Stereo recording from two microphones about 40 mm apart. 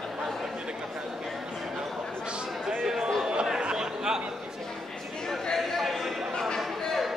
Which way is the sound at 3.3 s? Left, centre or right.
Right.